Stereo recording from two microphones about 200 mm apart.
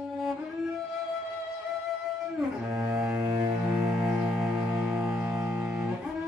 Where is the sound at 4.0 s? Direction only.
5° right (ahead or behind).